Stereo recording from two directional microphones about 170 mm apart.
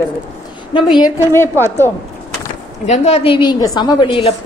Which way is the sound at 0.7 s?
25° left (ahead or behind).